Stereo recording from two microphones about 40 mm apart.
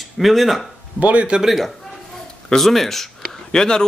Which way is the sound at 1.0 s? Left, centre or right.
Right.